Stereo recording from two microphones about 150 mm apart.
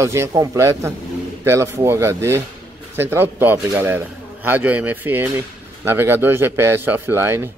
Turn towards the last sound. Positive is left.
turn(degrees=-15)  # may be behind; listen again after turning